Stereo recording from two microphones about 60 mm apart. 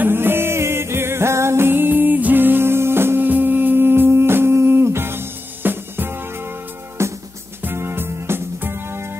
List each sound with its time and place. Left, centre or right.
0.0 s music: right